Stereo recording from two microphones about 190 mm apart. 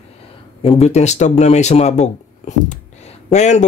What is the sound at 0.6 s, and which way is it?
Speech, 30° left (ahead or behind).